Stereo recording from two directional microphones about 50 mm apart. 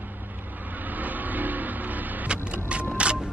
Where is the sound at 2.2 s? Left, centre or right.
Right.